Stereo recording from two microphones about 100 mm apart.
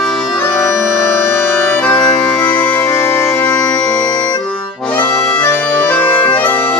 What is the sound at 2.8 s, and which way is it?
Music, 25° left (ahead or behind).